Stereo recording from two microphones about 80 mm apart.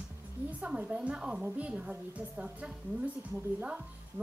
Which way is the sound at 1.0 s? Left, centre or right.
Centre.